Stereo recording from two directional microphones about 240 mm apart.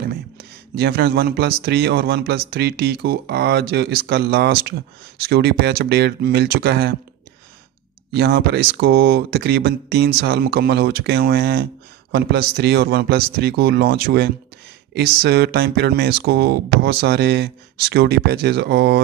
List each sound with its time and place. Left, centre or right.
0.7 s speech: right
8.1 s speech: right